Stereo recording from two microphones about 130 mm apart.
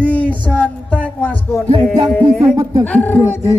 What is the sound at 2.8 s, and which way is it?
Speech, 15° left (ahead or behind).